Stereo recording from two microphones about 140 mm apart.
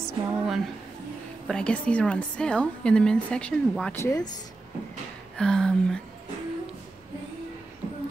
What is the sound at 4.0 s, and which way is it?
Speech, 25° left (ahead or behind).